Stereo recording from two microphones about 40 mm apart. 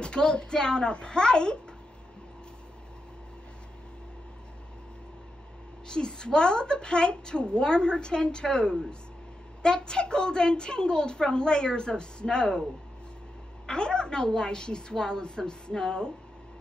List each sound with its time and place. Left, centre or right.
0.0 s a woman's voice: left
5.9 s a woman's voice: left
13.7 s a woman's voice: left